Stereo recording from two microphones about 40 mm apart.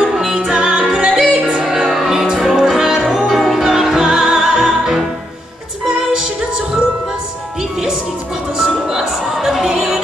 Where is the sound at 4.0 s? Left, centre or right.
Right.